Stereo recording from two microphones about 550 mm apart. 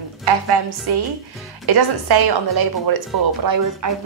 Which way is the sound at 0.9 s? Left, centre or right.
Right.